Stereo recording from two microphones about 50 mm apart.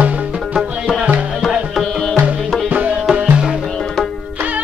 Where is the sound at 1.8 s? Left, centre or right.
Centre.